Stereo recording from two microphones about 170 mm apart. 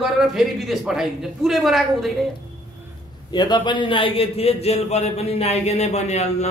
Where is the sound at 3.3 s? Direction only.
25° left (ahead or behind).